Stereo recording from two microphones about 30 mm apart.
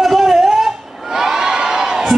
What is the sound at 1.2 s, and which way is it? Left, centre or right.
Crowd, centre.